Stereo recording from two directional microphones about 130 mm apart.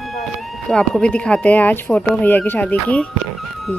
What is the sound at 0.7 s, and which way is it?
Speech, 5° left (ahead or behind).